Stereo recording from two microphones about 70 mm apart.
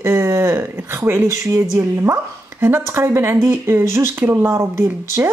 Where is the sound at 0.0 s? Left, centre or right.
Right.